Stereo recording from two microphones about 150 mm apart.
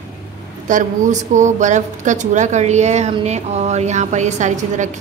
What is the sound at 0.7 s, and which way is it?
A woman's voice, 55° right (ahead or behind).